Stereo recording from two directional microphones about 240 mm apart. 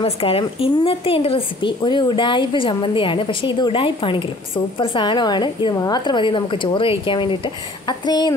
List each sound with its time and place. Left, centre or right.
0.0 s a woman's voice: left